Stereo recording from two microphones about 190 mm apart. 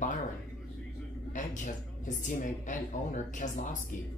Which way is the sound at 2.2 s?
40° left (ahead or behind).